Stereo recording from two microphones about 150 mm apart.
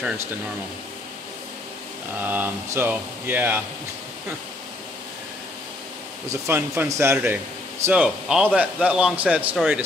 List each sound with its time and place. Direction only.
2.1 s speech: 10° right (ahead or behind)
6.4 s speech: 15° right (ahead or behind)